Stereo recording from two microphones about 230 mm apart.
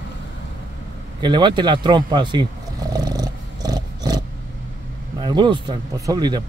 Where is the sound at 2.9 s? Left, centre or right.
Centre.